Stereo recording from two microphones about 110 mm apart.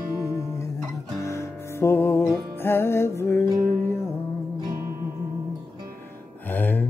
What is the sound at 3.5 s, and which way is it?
Music, 30° right (ahead or behind).